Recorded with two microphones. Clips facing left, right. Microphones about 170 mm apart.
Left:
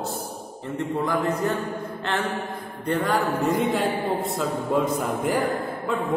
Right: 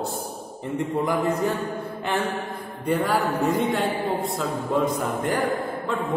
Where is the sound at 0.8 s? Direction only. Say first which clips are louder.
Right 1 dB; 15° right (ahead or behind).